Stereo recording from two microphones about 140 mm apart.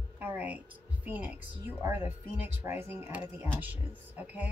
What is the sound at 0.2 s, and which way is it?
Speech, 15° right (ahead or behind).